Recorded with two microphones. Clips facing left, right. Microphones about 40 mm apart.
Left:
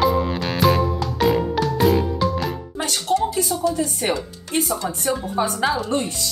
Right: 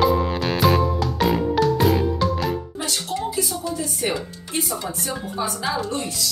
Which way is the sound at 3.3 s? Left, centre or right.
Left.